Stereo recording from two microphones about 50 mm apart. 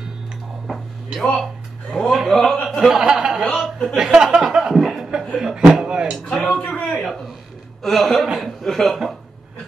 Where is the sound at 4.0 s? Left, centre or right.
Centre.